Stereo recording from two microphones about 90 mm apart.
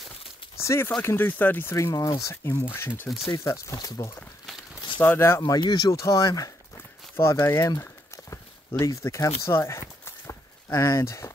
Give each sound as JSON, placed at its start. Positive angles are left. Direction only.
{"t": 0.6, "sound": "speech", "side_deg": 30}
{"t": 5.0, "sound": "speech", "side_deg": 25}
{"t": 5.4, "sound": "speech", "side_deg": 50}
{"t": 7.8, "sound": "clip-clop", "side_deg": 30}